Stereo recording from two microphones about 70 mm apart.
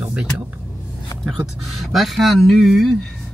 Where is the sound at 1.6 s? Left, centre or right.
Centre.